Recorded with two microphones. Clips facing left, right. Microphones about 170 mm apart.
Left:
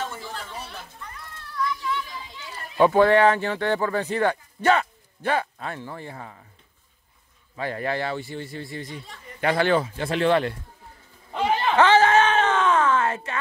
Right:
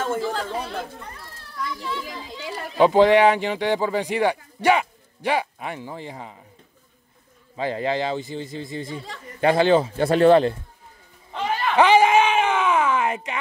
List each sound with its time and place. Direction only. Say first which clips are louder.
0.2 s speech: right 10 dB; 90° right
1.8 s a child's voice: left 1 dB; 30° right (ahead or behind)
2.0 s a child's voice: right 6 dB; 90° right
2.8 s speech: right 2 dB; 20° right (ahead or behind)
7.5 s speech: right 3 dB; 20° right (ahead or behind)
11.7 s speech: right 2 dB; 15° right (ahead or behind)